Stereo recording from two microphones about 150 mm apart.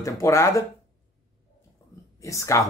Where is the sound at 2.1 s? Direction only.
20° left (ahead or behind).